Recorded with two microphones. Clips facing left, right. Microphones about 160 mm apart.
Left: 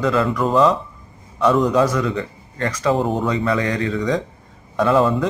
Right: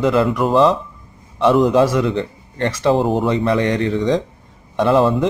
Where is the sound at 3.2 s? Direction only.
25° right (ahead or behind).